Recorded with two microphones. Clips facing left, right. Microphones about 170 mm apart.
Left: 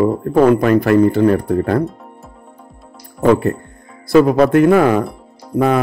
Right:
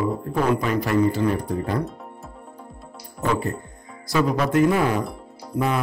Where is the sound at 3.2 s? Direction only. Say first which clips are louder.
Left 11 dB; 65° left (ahead or behind).